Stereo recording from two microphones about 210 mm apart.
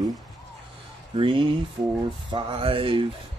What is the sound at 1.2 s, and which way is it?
Speech, 25° right (ahead or behind).